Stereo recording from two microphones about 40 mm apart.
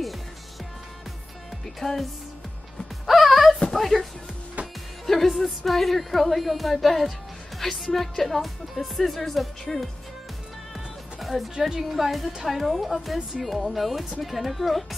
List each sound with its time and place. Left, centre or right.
1.8 s speech: centre
3.1 s music: centre
3.7 s speech: centre
4.6 s music: right
5.0 s music: centre
5.7 s speech: centre
10.7 s music: centre
11.9 s speech: centre